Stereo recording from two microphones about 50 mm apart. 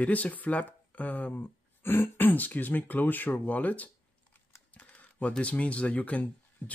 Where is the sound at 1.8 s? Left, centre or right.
Left.